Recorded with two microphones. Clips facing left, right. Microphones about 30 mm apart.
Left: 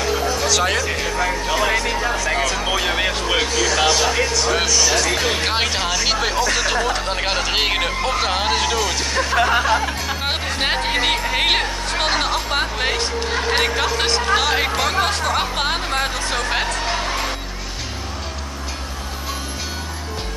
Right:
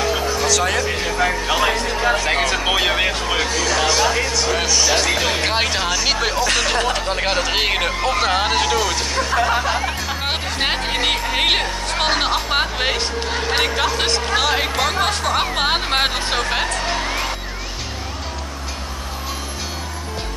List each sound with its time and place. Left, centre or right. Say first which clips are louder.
0.5 s speech: even; centre
0.7 s speech: right 1 dB; centre
1.2 s speech: right 3 dB; right
2.0 s speech: right 3 dB; right
2.3 s speech: right 2 dB; right
2.9 s speech: right 1 dB; centre
3.3 s speech: left 1 dB; centre
6.4 s speech: right 1 dB; right
7.1 s speech: right 1 dB; centre
15.9 s speech: right 3 dB; right
16.4 s speech: even; centre